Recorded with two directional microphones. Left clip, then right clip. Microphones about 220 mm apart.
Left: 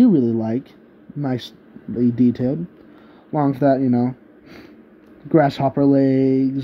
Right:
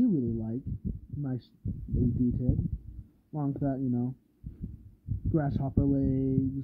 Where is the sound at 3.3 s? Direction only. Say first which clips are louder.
Left 16 dB; 10° left (ahead or behind).